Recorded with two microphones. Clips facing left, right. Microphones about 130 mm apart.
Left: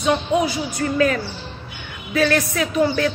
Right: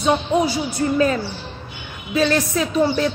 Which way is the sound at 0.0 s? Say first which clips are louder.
Right 1 dB; 25° right (ahead or behind).